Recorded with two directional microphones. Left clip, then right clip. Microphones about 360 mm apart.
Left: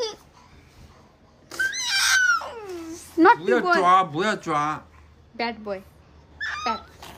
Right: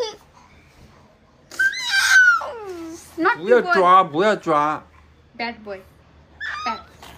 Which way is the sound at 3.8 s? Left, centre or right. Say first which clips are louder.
Right 5 dB; centre.